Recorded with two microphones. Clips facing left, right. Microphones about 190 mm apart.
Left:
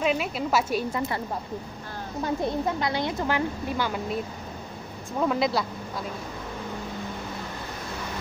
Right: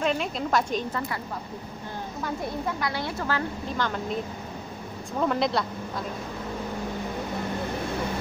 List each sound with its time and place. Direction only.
0.0 s a woman's voice: 5° left (ahead or behind)
2.2 s speech: 25° left (ahead or behind); by 4.2 s 10° left (ahead or behind)
5.2 s a woman's voice: centre (ahead or behind)